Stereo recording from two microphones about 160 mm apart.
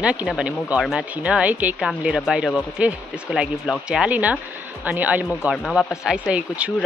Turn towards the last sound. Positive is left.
turn(degrees=-5)  # may be behind; listen again after turning